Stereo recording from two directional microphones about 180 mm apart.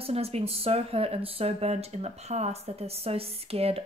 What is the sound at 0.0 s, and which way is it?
Speech, 35° right (ahead or behind).